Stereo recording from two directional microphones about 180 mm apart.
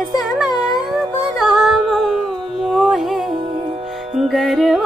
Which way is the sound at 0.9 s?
Centre (ahead or behind).